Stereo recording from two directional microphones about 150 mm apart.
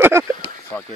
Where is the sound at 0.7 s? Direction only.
15° left (ahead or behind).